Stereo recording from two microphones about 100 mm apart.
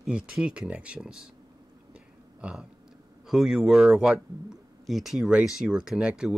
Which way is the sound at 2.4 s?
10° right (ahead or behind).